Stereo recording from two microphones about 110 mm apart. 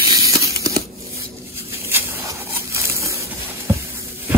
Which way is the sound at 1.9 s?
25° right (ahead or behind).